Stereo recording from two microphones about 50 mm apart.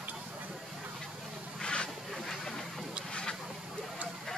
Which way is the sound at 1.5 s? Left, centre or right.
Centre.